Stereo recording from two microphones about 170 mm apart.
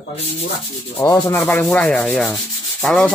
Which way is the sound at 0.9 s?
20° left (ahead or behind).